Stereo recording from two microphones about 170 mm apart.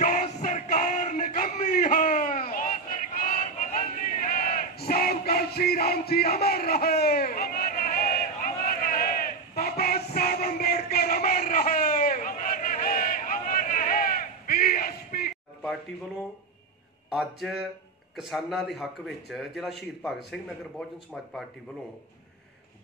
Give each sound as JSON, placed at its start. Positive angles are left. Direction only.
{"t": 0.0, "sound": "music", "side_deg": 50}
{"t": 1.8, "sound": "a sound", "side_deg": 55}
{"t": 17.1, "sound": "a man's voice", "side_deg": 0}
{"t": 21.1, "sound": "a man's voice", "side_deg": 5}